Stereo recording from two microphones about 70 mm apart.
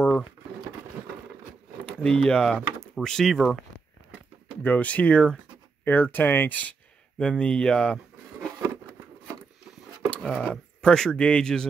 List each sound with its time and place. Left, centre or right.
2.0 s speech: centre
4.6 s speech: left
5.9 s speech: left
7.2 s speech: centre
10.0 s a sound: centre
10.4 s speech: centre